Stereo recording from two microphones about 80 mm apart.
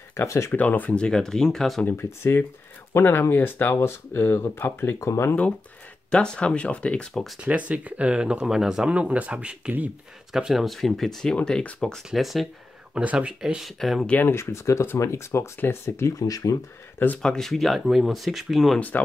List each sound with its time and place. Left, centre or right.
0.1 s speech: left
0.5 s speech: left
1.9 s speech: left
6.0 s speech: centre
7.3 s speech: centre
10.3 s speech: centre
12.1 s speech: centre
12.9 s speech: centre
14.0 s speech: centre
14.3 s speech: left
16.1 s speech: left
17.2 s speech: centre
18.8 s speech: left